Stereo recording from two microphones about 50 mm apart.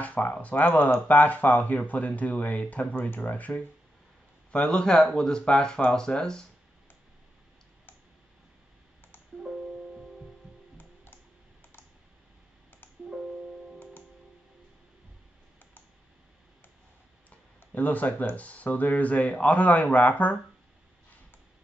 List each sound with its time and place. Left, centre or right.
0.0 s speech: left
4.5 s speech: centre
9.4 s music: centre
12.8 s music: left
17.7 s speech: left